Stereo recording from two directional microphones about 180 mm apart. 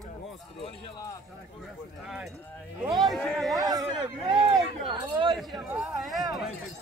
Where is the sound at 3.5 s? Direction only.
20° right (ahead or behind).